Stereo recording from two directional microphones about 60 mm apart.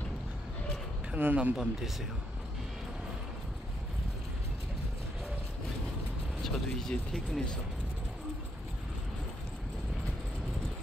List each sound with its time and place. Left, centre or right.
1.1 s speech: right
1.6 s speech: centre
6.4 s speech: centre